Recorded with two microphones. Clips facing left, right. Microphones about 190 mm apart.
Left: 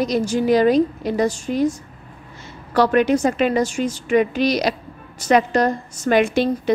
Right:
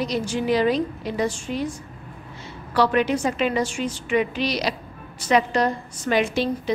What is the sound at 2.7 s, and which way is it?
A woman's voice, 45° left (ahead or behind).